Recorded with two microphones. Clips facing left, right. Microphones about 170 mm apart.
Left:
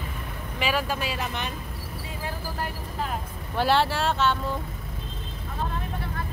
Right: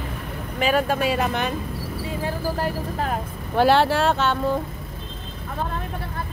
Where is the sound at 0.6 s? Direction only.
50° right (ahead or behind).